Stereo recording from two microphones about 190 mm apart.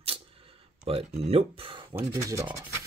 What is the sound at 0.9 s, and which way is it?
Speech, 30° right (ahead or behind).